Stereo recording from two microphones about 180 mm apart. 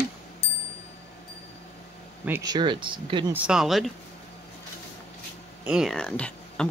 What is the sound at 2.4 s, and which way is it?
Speech, 25° right (ahead or behind).